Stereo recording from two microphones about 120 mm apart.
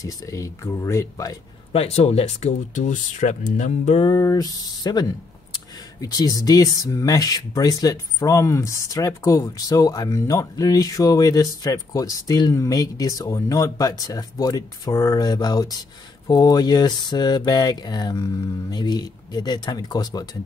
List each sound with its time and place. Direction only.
0.0 s speech: 25° left (ahead or behind)
1.7 s speech: 60° left (ahead or behind); by 4.0 s 80° left
4.0 s speech: 30° left (ahead or behind)